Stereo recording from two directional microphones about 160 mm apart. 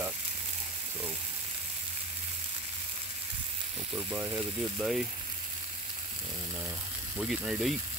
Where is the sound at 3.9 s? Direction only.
15° right (ahead or behind).